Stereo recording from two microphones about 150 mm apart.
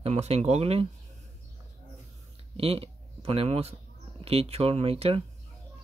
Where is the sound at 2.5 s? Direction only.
40° right (ahead or behind).